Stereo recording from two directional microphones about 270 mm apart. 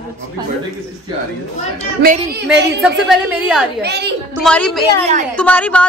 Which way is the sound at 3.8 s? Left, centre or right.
Right.